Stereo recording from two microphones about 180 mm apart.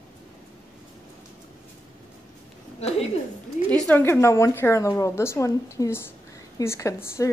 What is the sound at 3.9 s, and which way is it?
A woman's voice, 10° left (ahead or behind).